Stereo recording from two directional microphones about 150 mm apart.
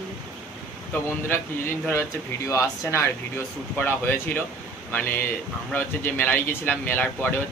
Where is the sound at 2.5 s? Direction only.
20° left (ahead or behind).